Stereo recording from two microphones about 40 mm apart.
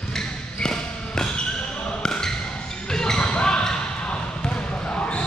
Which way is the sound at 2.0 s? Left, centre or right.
Centre.